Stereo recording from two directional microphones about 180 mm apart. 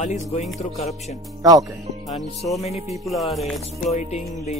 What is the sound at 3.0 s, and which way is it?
Speech, centre (ahead or behind).